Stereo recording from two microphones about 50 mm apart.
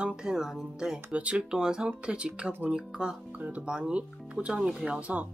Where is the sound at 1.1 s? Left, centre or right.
Right.